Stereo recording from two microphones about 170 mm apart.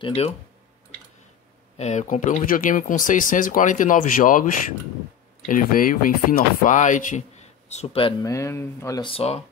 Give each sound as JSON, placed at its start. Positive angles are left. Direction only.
{"t": 0.0, "sound": "speech", "side_deg": 35}
{"t": 1.8, "sound": "speech", "side_deg": 45}
{"t": 5.5, "sound": "speech", "side_deg": 55}
{"t": 7.7, "sound": "speech", "side_deg": 35}
{"t": 8.2, "sound": "speech", "side_deg": 15}
{"t": 9.0, "sound": "speech", "side_deg": 35}